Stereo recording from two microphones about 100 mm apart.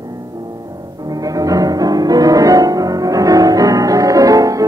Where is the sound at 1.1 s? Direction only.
35° right (ahead or behind).